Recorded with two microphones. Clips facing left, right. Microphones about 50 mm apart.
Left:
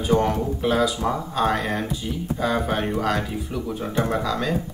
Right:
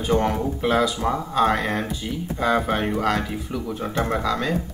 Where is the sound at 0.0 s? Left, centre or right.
Centre.